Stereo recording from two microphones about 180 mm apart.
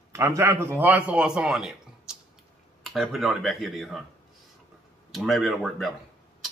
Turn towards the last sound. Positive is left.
turn(degrees=0)  # may be behind; listen again after turning